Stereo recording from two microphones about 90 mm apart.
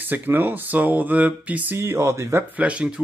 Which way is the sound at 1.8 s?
30° right (ahead or behind).